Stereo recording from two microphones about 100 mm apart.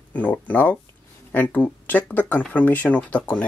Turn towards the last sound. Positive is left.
turn(degrees=15)  # may be behind; listen again after turning